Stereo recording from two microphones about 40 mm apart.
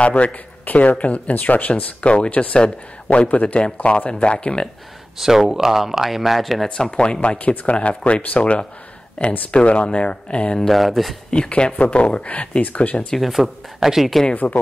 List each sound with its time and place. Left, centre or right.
0.0 s speech: left
5.2 s speech: centre
6.8 s speech: left
10.7 s speech: centre
11.2 s speech: left
13.1 s speech: centre
14.3 s speech: left